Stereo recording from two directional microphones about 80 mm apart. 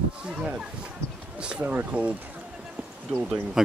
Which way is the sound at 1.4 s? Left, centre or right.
Centre.